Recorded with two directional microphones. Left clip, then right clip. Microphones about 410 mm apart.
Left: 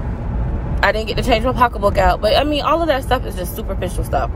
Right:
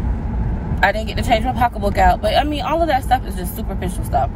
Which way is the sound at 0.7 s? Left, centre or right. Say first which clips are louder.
Left 1 dB; centre.